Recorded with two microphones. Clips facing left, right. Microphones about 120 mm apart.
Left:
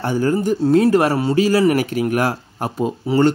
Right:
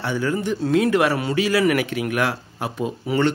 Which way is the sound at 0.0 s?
40° left (ahead or behind).